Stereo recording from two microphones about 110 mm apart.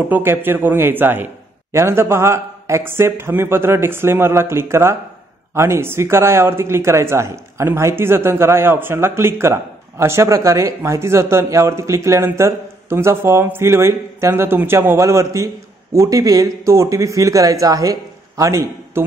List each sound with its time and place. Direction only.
0.1 s speech: 20° right (ahead or behind)